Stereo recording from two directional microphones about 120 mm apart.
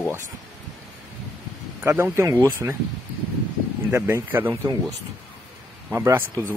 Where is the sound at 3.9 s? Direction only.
20° right (ahead or behind).